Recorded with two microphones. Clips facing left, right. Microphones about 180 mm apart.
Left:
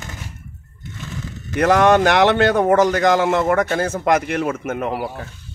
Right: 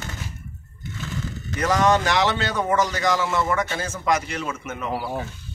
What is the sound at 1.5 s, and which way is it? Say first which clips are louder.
Speech: left 6 dB; 60° left (ahead or behind).